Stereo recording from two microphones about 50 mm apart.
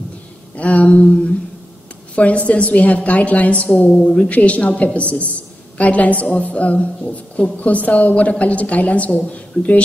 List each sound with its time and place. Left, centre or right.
0.6 s a woman's voice: left